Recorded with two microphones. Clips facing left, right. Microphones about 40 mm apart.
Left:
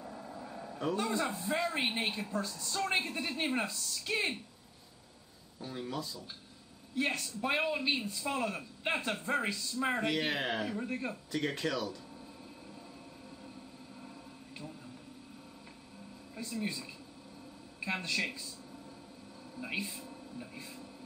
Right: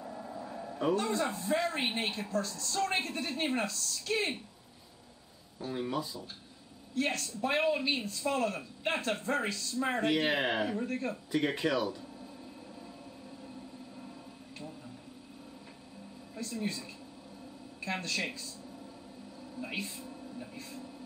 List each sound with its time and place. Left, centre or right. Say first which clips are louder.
0.0 s a sound: right 3 dB; centre
0.9 s a man's voice: right 2 dB; centre
2.3 s a woman's voice: right 3 dB; centre
5.6 s speech: right 5 dB; centre
7.0 s a man's voice: right 1 dB; centre
10.0 s speech: right 4 dB; centre
10.8 s a woman's voice: right 3 dB; centre
11.3 s speech: right 4 dB; centre
16.3 s a woman's voice: right 1 dB; centre
19.6 s a woman's voice: even; centre